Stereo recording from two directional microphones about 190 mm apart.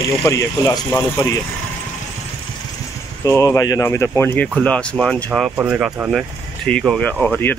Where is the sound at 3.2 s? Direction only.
15° left (ahead or behind).